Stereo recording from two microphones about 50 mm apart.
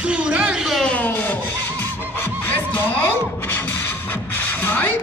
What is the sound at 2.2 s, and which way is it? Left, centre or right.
Music, left.